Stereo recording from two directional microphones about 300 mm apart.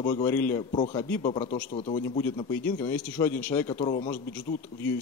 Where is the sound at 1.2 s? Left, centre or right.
Centre.